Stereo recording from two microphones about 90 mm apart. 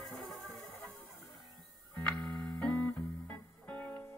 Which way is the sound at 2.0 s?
10° left (ahead or behind).